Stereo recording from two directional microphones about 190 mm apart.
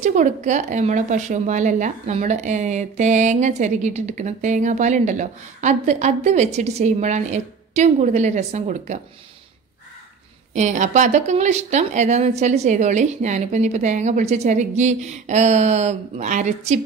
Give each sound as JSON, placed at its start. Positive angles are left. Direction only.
{"t": 0.0, "sound": "speech", "side_deg": -40}
{"t": 10.5, "sound": "speech", "side_deg": -40}